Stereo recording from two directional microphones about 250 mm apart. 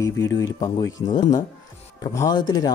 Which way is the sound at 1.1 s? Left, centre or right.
Centre.